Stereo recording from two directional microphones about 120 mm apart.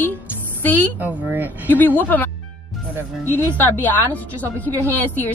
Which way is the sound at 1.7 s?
15° left (ahead or behind).